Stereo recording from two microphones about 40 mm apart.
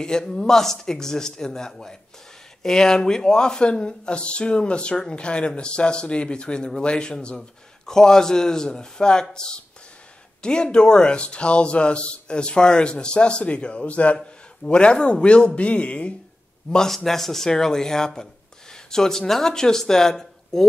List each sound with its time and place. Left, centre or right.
0.2 s a man's voice: centre
7.3 s a man's voice: centre; by 16.2 s left
16.7 s speech: centre